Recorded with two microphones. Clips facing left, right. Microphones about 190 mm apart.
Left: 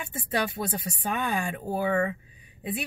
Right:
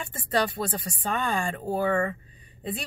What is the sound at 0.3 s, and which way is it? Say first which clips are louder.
Speech: right 2 dB; 10° left (ahead or behind).